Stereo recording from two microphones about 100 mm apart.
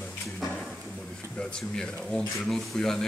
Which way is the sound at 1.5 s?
5° left (ahead or behind).